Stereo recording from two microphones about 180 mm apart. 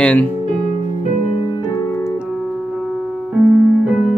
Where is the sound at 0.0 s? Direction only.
10° left (ahead or behind).